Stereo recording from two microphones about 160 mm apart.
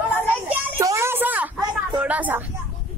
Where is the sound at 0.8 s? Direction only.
20° right (ahead or behind).